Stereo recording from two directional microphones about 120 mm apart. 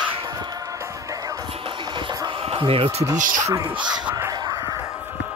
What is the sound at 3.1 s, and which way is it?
Speech, 90° right.